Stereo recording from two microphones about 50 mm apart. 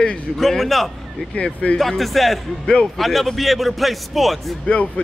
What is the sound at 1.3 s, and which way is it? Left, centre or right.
Speech, left.